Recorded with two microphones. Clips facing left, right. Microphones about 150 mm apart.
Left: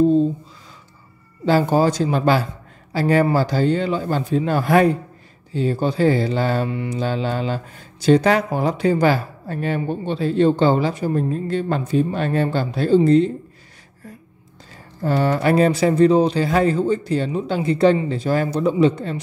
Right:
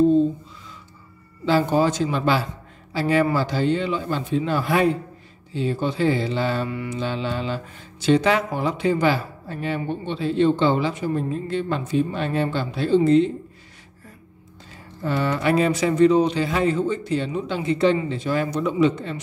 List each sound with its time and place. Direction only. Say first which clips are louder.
1.4 s a man's voice: left 3 dB; 40° left (ahead or behind)
6.7 s mantra: left 3 dB; 30° left (ahead or behind)
7.0 s speech: left 4 dB; 45° left (ahead or behind)
15.0 s speech: left 4 dB; 40° left (ahead or behind)